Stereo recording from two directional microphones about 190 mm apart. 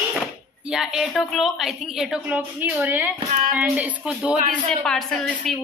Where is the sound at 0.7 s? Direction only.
5° right (ahead or behind).